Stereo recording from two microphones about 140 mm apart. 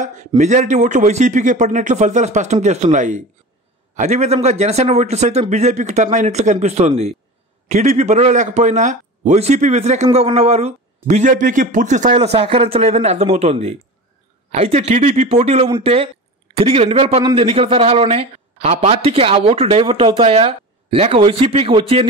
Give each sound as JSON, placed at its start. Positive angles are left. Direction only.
{"t": 0.4, "sound": "a man's voice", "side_deg": -60}
{"t": 17.2, "sound": "a man's voice", "side_deg": -35}